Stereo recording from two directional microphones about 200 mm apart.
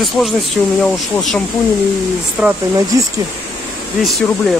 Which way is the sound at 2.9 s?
15° right (ahead or behind).